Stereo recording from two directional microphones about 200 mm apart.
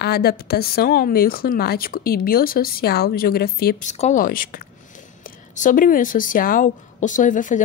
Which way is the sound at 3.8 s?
40° left (ahead or behind).